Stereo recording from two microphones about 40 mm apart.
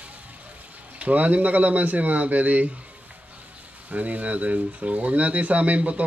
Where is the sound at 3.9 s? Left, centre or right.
Right.